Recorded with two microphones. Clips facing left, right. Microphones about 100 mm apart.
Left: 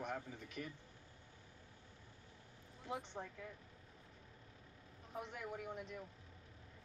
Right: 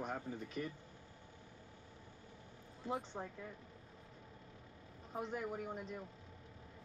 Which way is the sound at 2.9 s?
35° right (ahead or behind).